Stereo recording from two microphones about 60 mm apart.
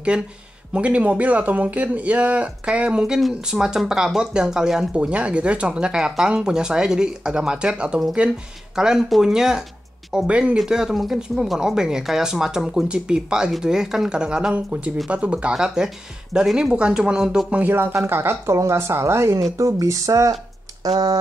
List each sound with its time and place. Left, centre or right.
0.1 s speech: centre
10.6 s speech: centre
17.5 s speech: right
17.7 s speech: right
19.5 s a sound: right
20.8 s speech: right